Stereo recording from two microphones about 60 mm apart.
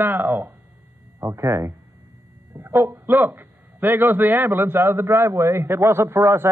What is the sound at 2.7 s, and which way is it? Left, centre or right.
A man's voice, right.